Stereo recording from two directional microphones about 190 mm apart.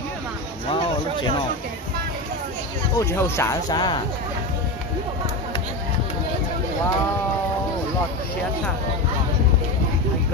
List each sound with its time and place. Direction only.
3.0 s speech: 15° left (ahead or behind)